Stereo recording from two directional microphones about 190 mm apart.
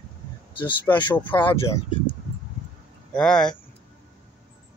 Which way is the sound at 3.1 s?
5° left (ahead or behind).